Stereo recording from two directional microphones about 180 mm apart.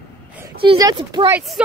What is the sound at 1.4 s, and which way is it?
Speech, 5° right (ahead or behind).